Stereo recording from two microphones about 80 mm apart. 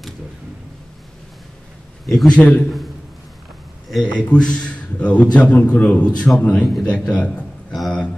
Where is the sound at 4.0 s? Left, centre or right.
Centre.